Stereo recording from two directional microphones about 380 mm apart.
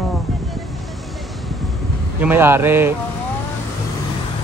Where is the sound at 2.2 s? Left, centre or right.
Centre.